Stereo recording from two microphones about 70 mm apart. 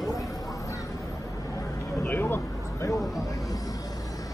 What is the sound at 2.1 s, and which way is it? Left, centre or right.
Speech, left.